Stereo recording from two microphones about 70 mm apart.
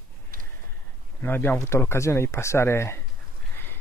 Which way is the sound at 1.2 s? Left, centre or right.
Left.